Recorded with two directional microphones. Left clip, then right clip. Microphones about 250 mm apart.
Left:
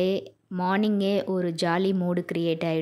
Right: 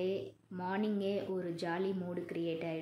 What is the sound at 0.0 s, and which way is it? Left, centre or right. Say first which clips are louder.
A woman's voice: left 11 dB; left.